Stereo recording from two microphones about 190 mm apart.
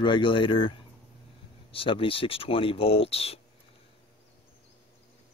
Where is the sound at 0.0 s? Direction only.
25° left (ahead or behind).